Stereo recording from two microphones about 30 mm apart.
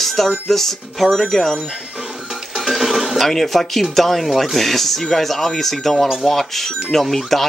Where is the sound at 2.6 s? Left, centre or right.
Centre.